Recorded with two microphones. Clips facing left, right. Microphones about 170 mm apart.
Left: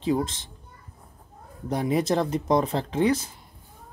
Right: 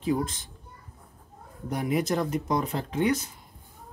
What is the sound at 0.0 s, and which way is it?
Speech, 25° left (ahead or behind).